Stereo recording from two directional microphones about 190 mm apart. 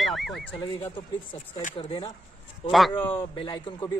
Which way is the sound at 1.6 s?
30° left (ahead or behind).